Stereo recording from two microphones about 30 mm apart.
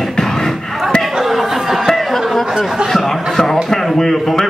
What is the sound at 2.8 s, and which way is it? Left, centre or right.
Speech, centre.